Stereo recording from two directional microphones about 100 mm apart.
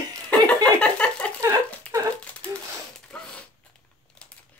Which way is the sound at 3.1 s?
10° left (ahead or behind).